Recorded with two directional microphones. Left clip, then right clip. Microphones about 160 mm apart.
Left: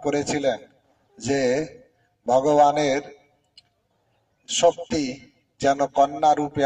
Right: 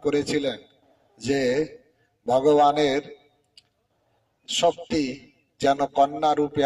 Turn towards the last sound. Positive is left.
turn(degrees=-25)  # may be behind; listen again after turning